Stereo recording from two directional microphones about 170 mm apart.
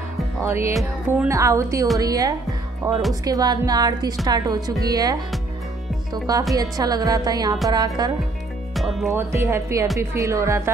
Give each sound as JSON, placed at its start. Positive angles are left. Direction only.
{"t": 0.4, "sound": "music", "side_deg": -15}
{"t": 1.1, "sound": "speech", "side_deg": -15}
{"t": 6.5, "sound": "speech", "side_deg": -20}
{"t": 8.7, "sound": "music", "side_deg": 0}
{"t": 9.1, "sound": "speech", "side_deg": -15}